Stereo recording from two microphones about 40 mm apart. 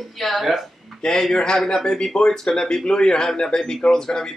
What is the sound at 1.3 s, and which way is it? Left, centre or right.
Speech, centre.